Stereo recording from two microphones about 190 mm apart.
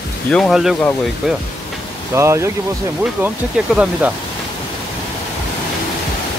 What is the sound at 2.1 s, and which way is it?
Speech, 15° right (ahead or behind).